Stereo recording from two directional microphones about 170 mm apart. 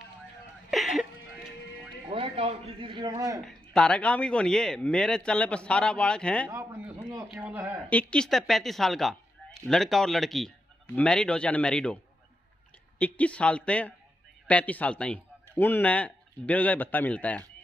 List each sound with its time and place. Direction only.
0.7 s a sound: centre (ahead or behind)
2.0 s a man's voice: 30° right (ahead or behind)
3.4 s a man's voice: 5° left (ahead or behind)
6.5 s a sound: 15° right (ahead or behind)
7.2 s speech: 10° right (ahead or behind)
7.9 s a man's voice: 5° left (ahead or behind)
13.0 s speech: 5° left (ahead or behind)